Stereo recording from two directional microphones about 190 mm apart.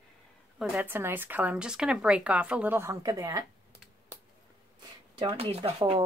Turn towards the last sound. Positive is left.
turn(degrees=-25)  # may be behind; listen again after turning